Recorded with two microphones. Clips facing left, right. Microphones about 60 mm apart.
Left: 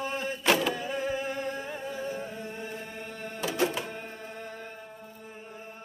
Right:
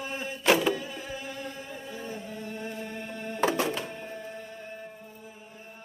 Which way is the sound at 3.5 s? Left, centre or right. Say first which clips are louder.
Left 2 dB; right.